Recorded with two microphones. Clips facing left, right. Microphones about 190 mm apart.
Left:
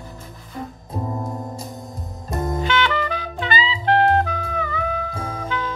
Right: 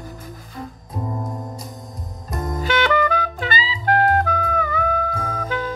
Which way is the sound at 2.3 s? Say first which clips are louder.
Left 2 dB; 25° left (ahead or behind).